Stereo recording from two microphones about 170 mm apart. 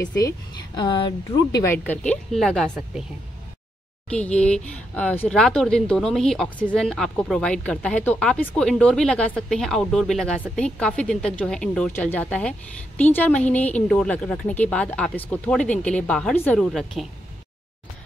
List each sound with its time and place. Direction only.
0.7 s speech: 25° left (ahead or behind)
1.6 s speech: 10° left (ahead or behind); by 3.1 s 5° right (ahead or behind)
4.1 s speech: 5° left (ahead or behind)